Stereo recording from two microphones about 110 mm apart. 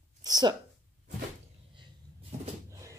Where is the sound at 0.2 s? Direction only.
40° right (ahead or behind).